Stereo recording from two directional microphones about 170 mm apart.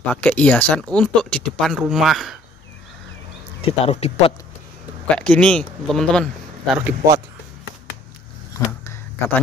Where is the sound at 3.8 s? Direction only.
35° left (ahead or behind).